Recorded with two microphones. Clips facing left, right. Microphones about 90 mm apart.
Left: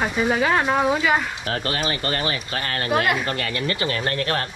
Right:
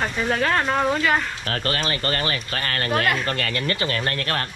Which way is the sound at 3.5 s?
25° left (ahead or behind).